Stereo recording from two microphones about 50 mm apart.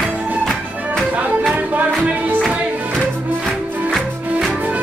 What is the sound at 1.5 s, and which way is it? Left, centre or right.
Music, right.